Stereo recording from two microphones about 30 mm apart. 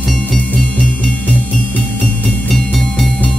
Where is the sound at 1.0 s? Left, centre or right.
Left.